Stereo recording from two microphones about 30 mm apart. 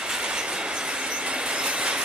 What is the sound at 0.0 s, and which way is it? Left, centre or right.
Train, right.